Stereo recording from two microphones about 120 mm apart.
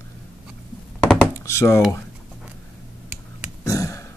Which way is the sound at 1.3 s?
25° left (ahead or behind).